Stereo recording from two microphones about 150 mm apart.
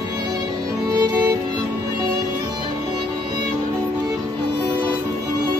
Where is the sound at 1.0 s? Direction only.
25° right (ahead or behind).